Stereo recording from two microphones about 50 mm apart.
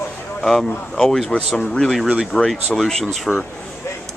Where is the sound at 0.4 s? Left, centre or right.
Centre.